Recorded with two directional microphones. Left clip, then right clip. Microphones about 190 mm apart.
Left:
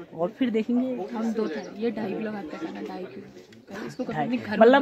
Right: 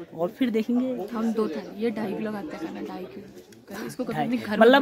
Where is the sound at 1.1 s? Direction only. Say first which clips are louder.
Right 1 dB; 20° right (ahead or behind).